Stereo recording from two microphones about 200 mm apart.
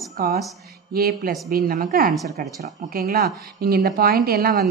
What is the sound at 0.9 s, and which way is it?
A woman's voice, 50° right (ahead or behind).